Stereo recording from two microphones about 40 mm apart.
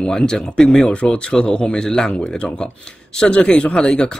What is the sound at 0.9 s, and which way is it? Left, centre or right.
Speech, left.